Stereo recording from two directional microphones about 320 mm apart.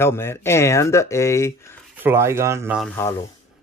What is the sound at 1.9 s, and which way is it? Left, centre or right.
Speech, centre.